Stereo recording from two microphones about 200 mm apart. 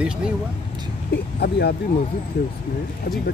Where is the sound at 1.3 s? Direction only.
55° left (ahead or behind).